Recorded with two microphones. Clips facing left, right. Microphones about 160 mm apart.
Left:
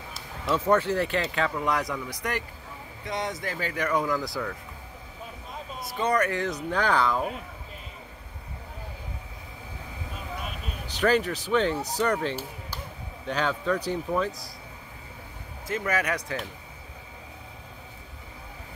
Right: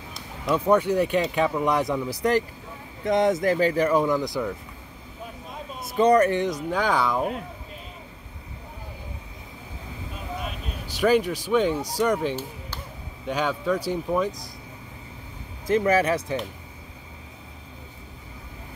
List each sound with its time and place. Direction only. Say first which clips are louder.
0.5 s speech: right 3 dB; 15° right (ahead or behind); by 2.4 s 30° right (ahead or behind)
3.1 s speech: right 11 dB; 50° right (ahead or behind); by 4.6 s 20° right (ahead or behind)
5.8 s speech: right 8 dB; 45° right (ahead or behind)
6.4 s speech: right 2 dB; 10° right (ahead or behind)
10.9 s speech: right 3 dB; 10° right (ahead or behind)
15.6 s speech: right 8 dB; 35° right (ahead or behind)